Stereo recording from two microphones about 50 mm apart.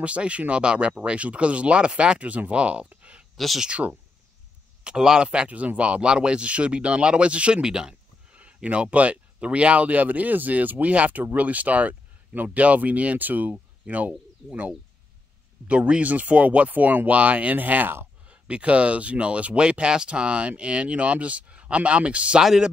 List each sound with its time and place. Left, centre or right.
0.0 s speech: right
3.3 s speech: centre
3.6 s speech: right
4.8 s speech: centre; by 14.1 s right
15.6 s speech: right